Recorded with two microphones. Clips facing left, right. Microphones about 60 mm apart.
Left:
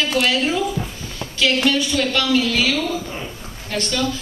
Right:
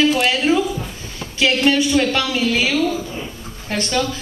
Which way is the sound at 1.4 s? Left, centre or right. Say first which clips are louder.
Right 2 dB; right.